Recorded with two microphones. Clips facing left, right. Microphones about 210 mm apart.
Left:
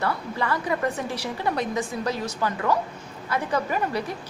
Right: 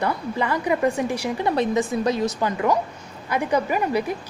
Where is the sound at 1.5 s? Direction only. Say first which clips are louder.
Right 5 dB; 20° right (ahead or behind).